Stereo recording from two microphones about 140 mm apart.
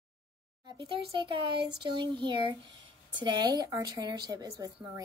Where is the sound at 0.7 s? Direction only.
35° right (ahead or behind).